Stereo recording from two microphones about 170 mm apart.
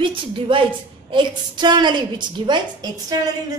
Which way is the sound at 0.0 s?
30° right (ahead or behind).